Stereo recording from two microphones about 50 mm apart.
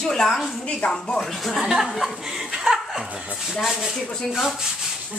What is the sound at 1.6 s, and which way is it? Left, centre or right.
A woman's voice, centre.